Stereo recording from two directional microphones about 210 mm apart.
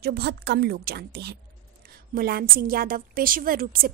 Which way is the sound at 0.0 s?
50° right (ahead or behind).